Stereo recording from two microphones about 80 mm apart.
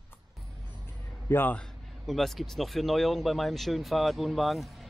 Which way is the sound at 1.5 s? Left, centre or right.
Centre.